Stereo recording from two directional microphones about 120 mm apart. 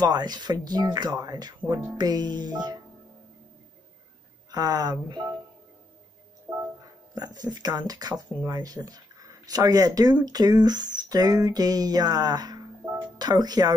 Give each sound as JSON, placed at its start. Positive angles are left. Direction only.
{"t": 0.0, "sound": "speech", "side_deg": -35}
{"t": 4.5, "sound": "speech", "side_deg": -35}
{"t": 6.5, "sound": "music", "side_deg": -10}
{"t": 7.2, "sound": "speech", "side_deg": -35}
{"t": 10.2, "sound": "a sound", "side_deg": -35}
{"t": 13.2, "sound": "speech", "side_deg": -35}